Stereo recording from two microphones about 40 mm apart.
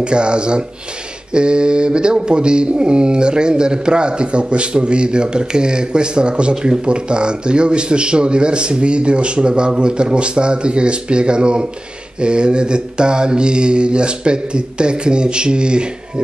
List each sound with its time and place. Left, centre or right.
0.0 s speech: right